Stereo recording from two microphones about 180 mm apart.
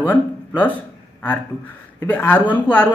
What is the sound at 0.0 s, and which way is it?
Speech, 10° left (ahead or behind).